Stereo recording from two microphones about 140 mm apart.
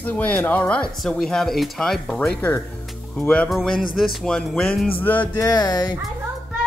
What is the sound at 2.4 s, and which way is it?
Speech, 15° left (ahead or behind).